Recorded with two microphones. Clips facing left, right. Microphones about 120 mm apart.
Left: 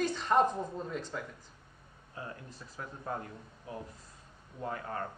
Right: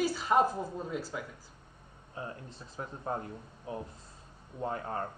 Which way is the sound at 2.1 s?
25° right (ahead or behind).